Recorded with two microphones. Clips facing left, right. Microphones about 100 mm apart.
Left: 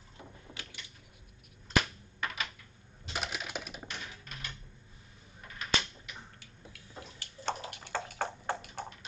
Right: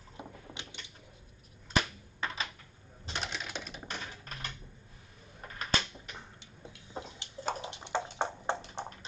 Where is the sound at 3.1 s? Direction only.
5° left (ahead or behind).